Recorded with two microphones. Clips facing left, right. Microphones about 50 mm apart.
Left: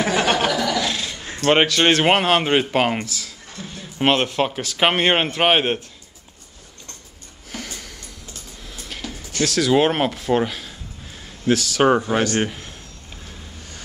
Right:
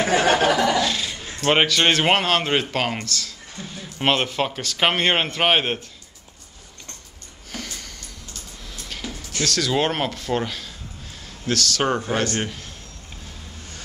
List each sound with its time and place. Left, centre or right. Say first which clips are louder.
0.1 s speech: right 3 dB; right
0.5 s a sound: right 3 dB; right
0.7 s a sound: right 1 dB; centre
1.4 s speech: left 2 dB; centre
7.5 s sniff: left 1 dB; centre
8.6 s music: left 1 dB; centre
9.4 s a man's voice: left 5 dB; centre